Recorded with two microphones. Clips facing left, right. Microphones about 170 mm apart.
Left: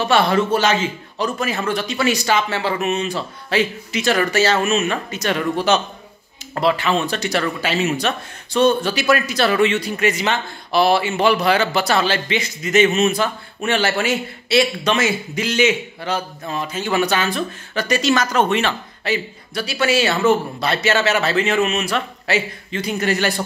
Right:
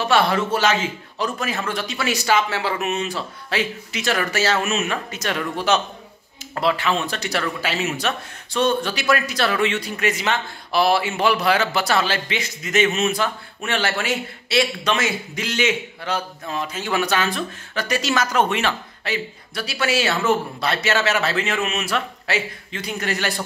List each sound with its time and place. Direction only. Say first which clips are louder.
0.0 s speech: left 2 dB; centre (ahead or behind)